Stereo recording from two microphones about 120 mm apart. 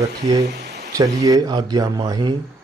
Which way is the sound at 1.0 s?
30° right (ahead or behind).